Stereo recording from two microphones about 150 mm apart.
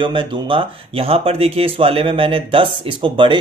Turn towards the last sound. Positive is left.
turn(degrees=-35)  # may be behind; listen again after turning